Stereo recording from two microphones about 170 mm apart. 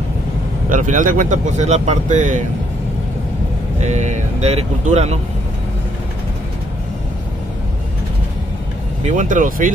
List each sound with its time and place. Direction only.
0.7 s speech: 50° right (ahead or behind)
3.8 s speech: 40° right (ahead or behind)
9.0 s speech: 50° right (ahead or behind)